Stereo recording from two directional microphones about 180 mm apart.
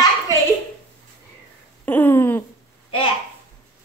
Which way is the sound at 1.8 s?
10° left (ahead or behind).